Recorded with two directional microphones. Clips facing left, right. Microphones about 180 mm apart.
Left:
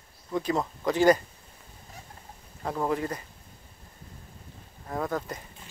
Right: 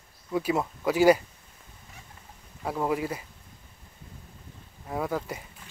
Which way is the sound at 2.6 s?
5° right (ahead or behind).